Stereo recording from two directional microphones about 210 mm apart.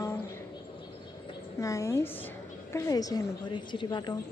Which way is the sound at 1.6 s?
15° left (ahead or behind).